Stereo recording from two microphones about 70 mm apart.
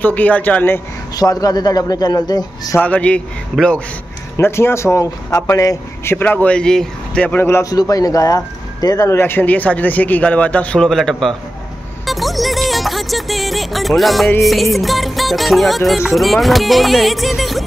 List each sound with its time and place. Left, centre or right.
0.0 s a man's voice: left
1.1 s a man's voice: left
2.8 s a man's voice: centre
4.4 s speech: left
6.0 s speech: left; by 7.2 s centre
7.2 s a man's voice: left
7.7 s a man's voice: left
9.2 s a man's voice: left
10.8 s music: centre